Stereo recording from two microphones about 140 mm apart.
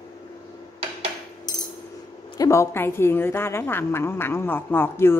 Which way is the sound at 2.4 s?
20° left (ahead or behind).